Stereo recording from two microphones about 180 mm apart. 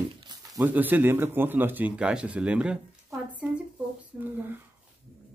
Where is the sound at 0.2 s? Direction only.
20° right (ahead or behind).